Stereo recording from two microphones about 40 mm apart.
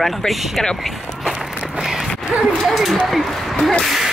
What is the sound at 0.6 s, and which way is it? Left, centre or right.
Speech, centre.